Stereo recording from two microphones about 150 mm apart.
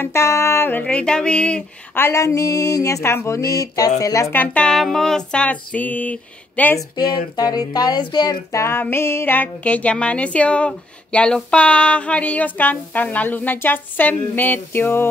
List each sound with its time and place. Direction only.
0.0 s speech: 20° left (ahead or behind)
2.0 s speech: 20° left (ahead or behind)
7.0 s speech: 30° left (ahead or behind)